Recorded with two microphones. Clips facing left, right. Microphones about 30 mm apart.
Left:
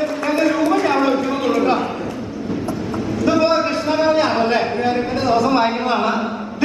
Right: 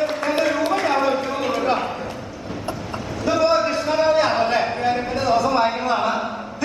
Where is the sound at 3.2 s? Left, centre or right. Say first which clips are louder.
Left 2 dB; centre.